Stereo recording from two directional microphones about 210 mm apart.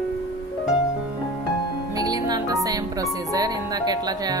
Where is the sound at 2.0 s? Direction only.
20° right (ahead or behind).